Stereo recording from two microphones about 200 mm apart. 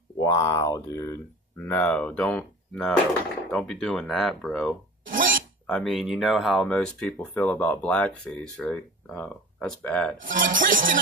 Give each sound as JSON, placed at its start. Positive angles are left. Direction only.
{"t": 0.2, "sound": "speech", "side_deg": 15}
{"t": 5.0, "sound": "a sound", "side_deg": -45}
{"t": 5.7, "sound": "speech", "side_deg": 0}
{"t": 10.2, "sound": "speech", "side_deg": -45}